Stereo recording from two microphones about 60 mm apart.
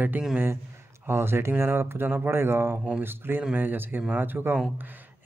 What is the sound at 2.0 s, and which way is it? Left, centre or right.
Speech, right.